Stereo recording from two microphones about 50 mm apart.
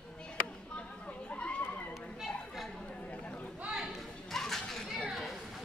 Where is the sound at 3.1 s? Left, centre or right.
Left.